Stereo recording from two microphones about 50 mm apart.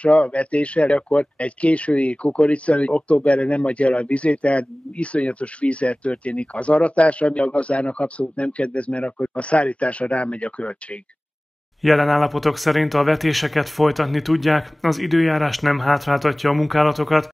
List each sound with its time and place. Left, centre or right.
0.0 s speech: left
11.8 s speech: centre